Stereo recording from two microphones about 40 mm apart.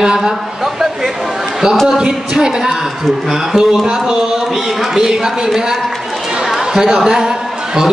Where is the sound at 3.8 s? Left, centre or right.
Centre.